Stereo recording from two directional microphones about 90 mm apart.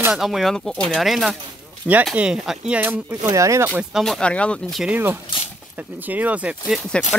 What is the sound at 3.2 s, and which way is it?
Speech, 35° right (ahead or behind).